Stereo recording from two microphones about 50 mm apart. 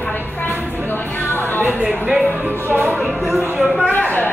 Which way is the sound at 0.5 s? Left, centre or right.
Right.